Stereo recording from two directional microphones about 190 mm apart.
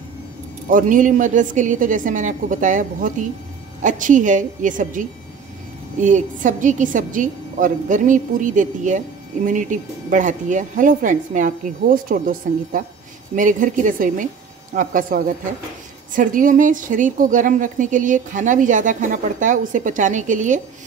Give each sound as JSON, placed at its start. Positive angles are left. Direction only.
{"t": 0.7, "sound": "a woman's voice", "side_deg": -45}